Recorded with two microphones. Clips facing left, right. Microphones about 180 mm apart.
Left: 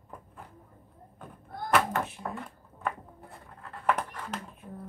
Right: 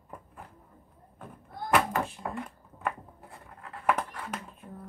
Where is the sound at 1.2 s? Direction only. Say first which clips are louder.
Left 1 dB; centre (ahead or behind).